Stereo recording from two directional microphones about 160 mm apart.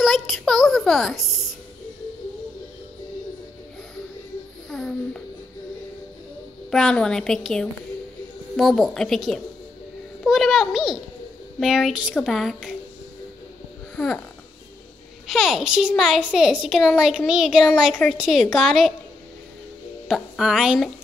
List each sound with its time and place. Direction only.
0.0 s a sound: centre (ahead or behind)
4.6 s a sound: 5° left (ahead or behind)
6.7 s speech: 5° left (ahead or behind)
13.9 s music: 5° left (ahead or behind)
15.2 s speech: centre (ahead or behind)
20.1 s a woman's voice: 5° right (ahead or behind)